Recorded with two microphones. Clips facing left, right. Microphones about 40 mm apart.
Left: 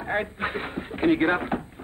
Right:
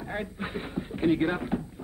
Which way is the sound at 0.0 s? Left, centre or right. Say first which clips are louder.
Left 7 dB; left.